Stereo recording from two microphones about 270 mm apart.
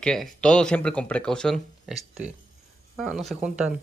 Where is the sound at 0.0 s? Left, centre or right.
Centre.